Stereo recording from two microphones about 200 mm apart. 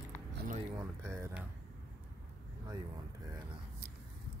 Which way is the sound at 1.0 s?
15° right (ahead or behind).